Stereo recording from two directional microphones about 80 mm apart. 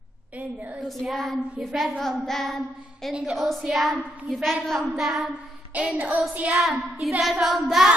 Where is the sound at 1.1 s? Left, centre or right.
Centre.